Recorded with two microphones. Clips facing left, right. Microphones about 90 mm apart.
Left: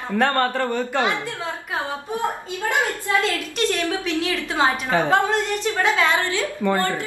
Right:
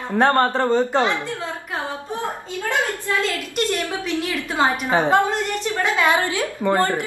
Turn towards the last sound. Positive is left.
turn(degrees=-20)  # may be behind; listen again after turning